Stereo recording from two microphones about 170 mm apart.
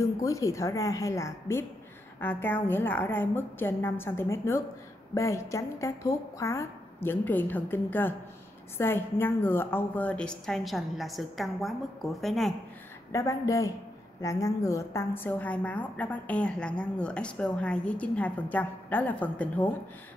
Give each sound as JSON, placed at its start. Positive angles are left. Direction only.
{"t": 0.0, "sound": "a woman's voice", "side_deg": 20}
{"t": 13.1, "sound": "a woman's voice", "side_deg": 20}